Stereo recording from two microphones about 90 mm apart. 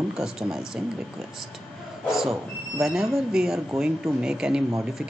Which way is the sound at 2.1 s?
Centre (ahead or behind).